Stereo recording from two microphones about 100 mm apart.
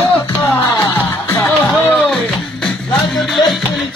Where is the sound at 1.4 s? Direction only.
5° left (ahead or behind).